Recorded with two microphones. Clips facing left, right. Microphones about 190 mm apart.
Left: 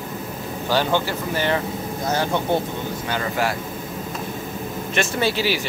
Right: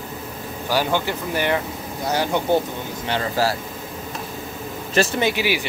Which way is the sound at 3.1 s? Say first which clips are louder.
Right 3 dB; 30° right (ahead or behind).